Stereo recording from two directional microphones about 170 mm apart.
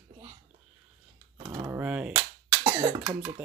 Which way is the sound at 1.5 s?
20° right (ahead or behind).